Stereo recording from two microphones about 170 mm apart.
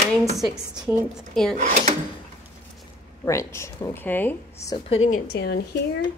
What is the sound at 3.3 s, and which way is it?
Speech, 15° left (ahead or behind).